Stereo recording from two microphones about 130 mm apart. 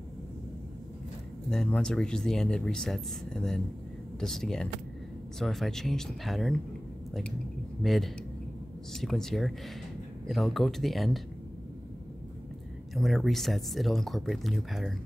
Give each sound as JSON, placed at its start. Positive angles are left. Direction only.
{"t": 1.5, "sound": "speech", "side_deg": 5}
{"t": 7.8, "sound": "speech", "side_deg": 0}
{"t": 12.9, "sound": "speech", "side_deg": 0}